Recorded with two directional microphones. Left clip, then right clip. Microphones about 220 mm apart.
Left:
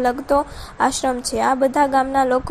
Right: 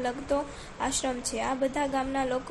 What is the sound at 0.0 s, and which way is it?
A woman's voice, 30° left (ahead or behind).